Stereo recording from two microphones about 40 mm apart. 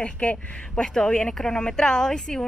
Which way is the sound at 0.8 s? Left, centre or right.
Centre.